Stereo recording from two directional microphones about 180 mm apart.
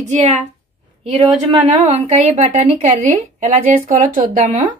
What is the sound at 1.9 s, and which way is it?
A woman's voice, 40° right (ahead or behind).